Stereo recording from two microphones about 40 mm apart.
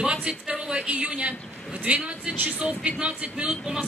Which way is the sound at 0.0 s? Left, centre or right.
Right.